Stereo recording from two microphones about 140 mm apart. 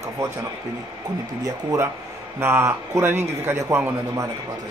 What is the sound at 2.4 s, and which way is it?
A man's voice, 20° right (ahead or behind).